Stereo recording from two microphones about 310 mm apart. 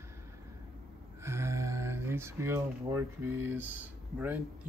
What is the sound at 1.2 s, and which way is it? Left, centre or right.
Speech, centre.